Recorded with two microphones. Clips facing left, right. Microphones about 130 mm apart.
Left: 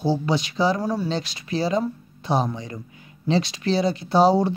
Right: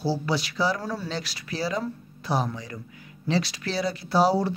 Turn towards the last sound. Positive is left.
turn(degrees=20)  # may be behind; listen again after turning